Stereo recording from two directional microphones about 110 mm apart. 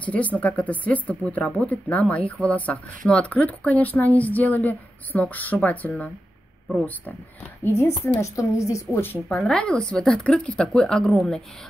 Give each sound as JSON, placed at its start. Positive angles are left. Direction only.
{"t": 0.0, "sound": "speech", "side_deg": 10}
{"t": 7.6, "sound": "speech", "side_deg": 25}
{"t": 9.4, "sound": "speech", "side_deg": 5}